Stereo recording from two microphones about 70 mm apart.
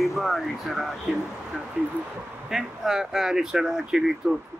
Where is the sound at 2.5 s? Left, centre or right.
Centre.